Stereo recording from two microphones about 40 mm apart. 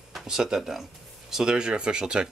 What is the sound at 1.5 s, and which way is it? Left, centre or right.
Speech, right.